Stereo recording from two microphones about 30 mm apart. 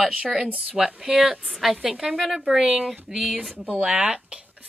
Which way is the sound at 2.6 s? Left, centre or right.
Right.